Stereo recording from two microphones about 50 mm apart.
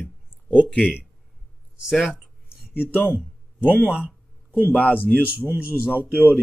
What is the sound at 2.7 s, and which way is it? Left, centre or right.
Speech, left.